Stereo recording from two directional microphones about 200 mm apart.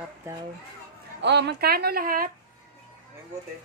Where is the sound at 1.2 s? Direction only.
60° right (ahead or behind).